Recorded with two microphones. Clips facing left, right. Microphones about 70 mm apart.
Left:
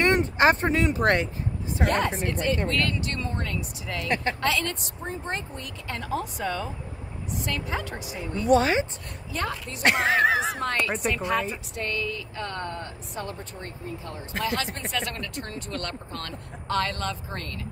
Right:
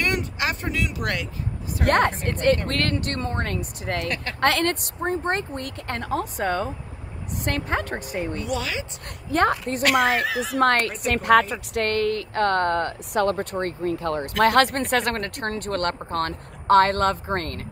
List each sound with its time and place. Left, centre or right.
0.0 s speech: left
1.9 s a woman's voice: right
4.1 s speech: left
4.4 s speech: right
8.5 s a woman's voice: left
9.3 s speech: right
9.8 s a woman's voice: left
11.1 s a woman's voice: right